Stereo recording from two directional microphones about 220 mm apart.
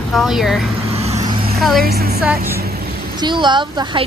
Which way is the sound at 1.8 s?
45° right (ahead or behind).